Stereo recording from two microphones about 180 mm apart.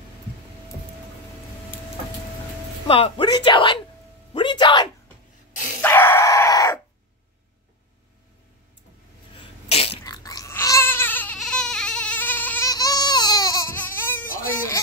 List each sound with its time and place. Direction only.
2.9 s speech: 30° left (ahead or behind)
4.3 s music: 25° left (ahead or behind)
5.8 s dog: 10° left (ahead or behind)
9.4 s sneeze: 35° left (ahead or behind)
10.0 s crying: 20° left (ahead or behind)
14.5 s a sound: 15° left (ahead or behind)